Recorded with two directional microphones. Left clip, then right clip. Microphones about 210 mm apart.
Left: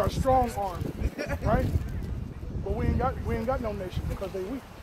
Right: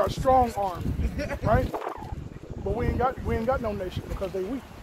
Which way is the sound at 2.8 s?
50° right (ahead or behind).